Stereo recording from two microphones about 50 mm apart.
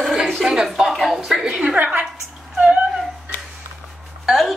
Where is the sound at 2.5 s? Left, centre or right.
Right.